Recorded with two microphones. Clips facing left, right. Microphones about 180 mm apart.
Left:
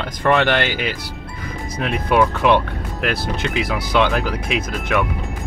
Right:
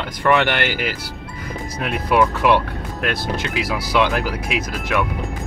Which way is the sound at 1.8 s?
5° right (ahead or behind).